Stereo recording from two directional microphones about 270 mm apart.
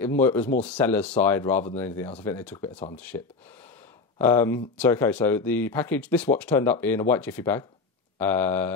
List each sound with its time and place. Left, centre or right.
0.0 s speech: centre